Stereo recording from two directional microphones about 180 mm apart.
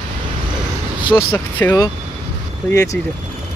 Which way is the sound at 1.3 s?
10° left (ahead or behind).